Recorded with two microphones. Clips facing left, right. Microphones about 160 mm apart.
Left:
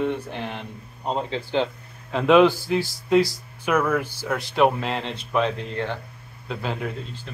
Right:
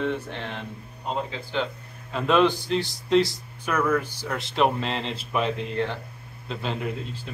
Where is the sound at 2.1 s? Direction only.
10° left (ahead or behind).